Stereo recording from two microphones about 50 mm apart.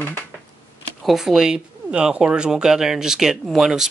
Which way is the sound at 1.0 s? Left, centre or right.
Centre.